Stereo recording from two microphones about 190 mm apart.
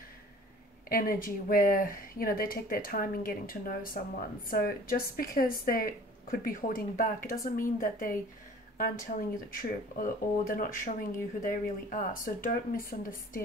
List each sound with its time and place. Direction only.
0.8 s speech: 50° left (ahead or behind)